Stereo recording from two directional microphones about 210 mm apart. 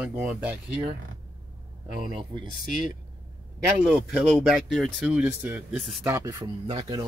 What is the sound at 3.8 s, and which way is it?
Speech, 5° right (ahead or behind).